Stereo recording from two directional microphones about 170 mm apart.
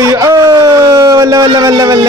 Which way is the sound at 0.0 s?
20° right (ahead or behind).